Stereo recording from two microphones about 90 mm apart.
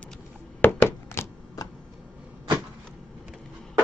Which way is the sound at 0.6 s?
25° left (ahead or behind).